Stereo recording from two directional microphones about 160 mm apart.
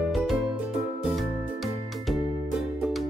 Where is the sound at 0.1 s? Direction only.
Centre (ahead or behind).